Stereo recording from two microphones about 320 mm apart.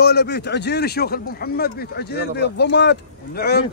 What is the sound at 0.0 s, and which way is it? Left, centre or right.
Speech, left.